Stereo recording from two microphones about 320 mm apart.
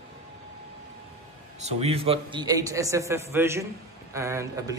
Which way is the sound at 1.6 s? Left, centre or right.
Centre.